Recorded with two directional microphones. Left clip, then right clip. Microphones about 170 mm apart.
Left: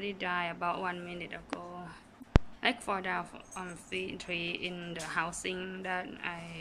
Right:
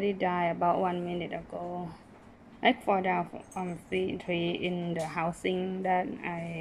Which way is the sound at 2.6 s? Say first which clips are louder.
Right 9 dB; 15° right (ahead or behind).